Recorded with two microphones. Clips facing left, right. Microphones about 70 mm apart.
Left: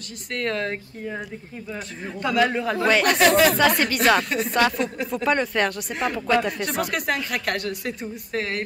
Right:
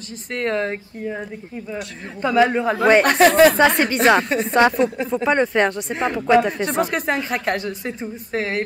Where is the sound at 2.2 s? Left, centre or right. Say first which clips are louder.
Right 5 dB; right.